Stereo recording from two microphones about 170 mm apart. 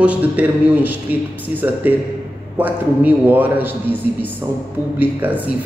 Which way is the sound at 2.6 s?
10° right (ahead or behind).